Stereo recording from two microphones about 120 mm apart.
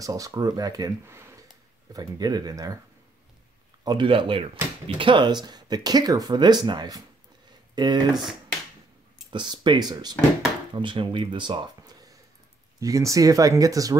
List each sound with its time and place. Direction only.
0.0 s speech: 30° right (ahead or behind)
1.1 s a sound: 20° right (ahead or behind)
2.0 s speech: 35° right (ahead or behind)
3.8 s speech: 40° right (ahead or behind)
8.2 s speech: centre (ahead or behind)
9.3 s speech: 40° right (ahead or behind)